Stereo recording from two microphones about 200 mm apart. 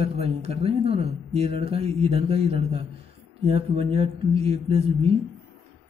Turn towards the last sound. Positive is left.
turn(degrees=-30)  # may be behind; listen again after turning